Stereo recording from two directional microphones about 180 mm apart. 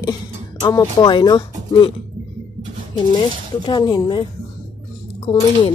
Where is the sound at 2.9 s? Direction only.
25° left (ahead or behind).